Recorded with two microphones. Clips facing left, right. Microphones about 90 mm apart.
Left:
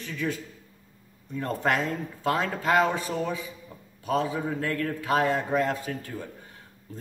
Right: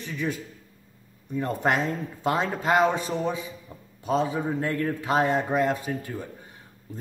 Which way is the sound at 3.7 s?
20° right (ahead or behind).